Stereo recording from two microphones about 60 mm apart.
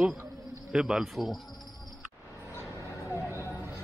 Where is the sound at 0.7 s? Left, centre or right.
Centre.